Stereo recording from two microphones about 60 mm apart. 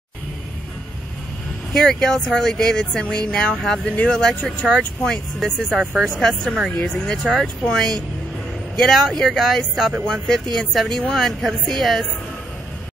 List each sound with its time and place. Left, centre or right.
1.7 s speech: centre
4.6 s a woman's voice: centre
6.8 s a woman's voice: centre